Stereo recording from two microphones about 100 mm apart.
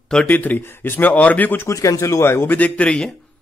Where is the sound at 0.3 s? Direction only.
15° left (ahead or behind).